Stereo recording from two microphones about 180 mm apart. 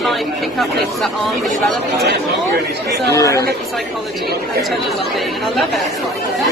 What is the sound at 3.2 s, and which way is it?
Speech, 15° left (ahead or behind).